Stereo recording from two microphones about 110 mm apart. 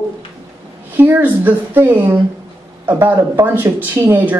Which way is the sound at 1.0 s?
15° right (ahead or behind).